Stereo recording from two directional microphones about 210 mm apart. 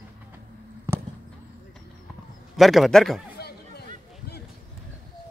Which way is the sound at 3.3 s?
50° left (ahead or behind).